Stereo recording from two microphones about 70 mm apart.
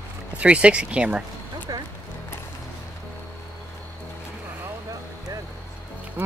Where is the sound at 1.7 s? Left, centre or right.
Right.